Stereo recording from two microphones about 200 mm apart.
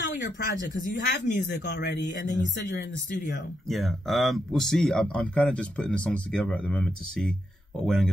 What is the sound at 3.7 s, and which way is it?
Speech, centre (ahead or behind).